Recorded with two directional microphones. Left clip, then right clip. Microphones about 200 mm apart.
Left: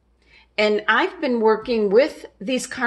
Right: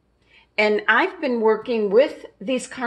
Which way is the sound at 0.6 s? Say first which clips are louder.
Even; 5° left (ahead or behind).